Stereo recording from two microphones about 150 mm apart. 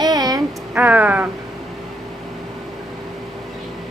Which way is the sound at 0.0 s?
25° right (ahead or behind).